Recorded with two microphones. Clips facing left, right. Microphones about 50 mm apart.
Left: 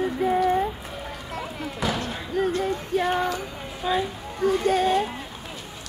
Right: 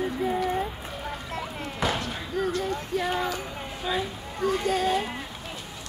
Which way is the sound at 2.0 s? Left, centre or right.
Left.